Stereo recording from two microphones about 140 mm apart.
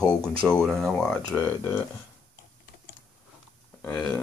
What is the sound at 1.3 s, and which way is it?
Speech, 20° left (ahead or behind).